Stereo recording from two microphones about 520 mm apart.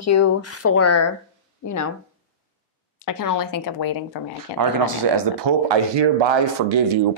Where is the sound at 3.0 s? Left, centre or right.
Left.